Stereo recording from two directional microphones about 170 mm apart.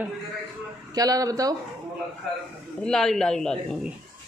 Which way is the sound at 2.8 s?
Centre (ahead or behind).